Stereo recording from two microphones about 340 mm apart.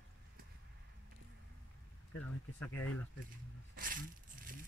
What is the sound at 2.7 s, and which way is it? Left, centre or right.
Speech, left.